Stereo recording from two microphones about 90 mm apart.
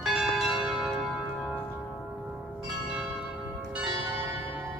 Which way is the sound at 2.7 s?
5° right (ahead or behind).